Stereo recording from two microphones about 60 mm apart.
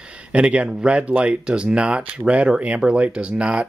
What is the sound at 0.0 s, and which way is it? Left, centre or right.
Speech, centre.